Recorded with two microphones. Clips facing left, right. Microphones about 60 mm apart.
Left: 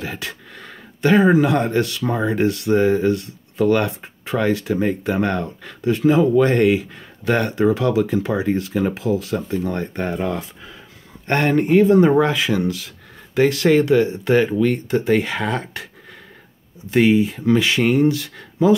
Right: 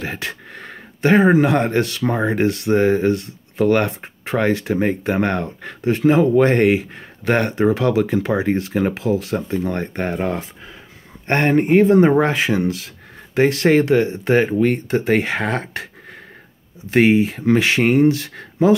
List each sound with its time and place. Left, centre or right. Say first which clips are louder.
0.0 s speech: right 2 dB; right
16.9 s speech: right 1 dB; right